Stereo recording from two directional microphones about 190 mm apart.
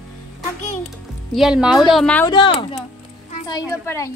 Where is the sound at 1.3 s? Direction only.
Centre (ahead or behind).